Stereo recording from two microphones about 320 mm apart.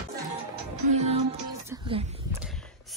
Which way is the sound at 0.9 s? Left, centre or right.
Centre.